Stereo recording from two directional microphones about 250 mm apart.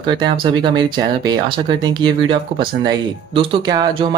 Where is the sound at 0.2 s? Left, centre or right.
Centre.